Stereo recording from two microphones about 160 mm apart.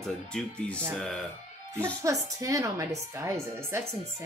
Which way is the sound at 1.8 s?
20° right (ahead or behind).